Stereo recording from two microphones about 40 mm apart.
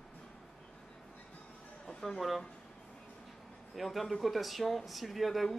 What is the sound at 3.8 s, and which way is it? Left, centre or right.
Speech, centre.